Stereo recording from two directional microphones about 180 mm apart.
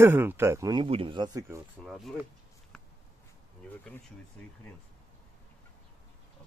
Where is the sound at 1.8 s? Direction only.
Centre (ahead or behind).